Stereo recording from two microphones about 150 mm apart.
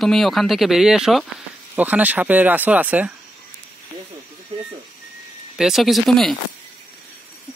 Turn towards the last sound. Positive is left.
turn(degrees=0)  # may be behind; listen again after turning